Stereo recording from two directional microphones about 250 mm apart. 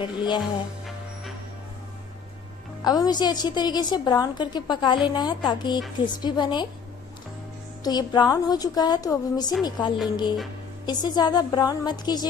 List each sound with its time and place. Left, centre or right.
0.0 s a woman's voice: centre
2.8 s a woman's voice: centre
7.8 s a woman's voice: centre